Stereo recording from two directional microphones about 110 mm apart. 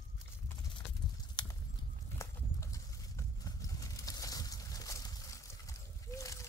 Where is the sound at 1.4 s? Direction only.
40° left (ahead or behind).